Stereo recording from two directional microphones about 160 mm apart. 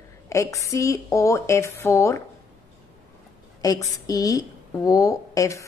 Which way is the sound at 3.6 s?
25° left (ahead or behind).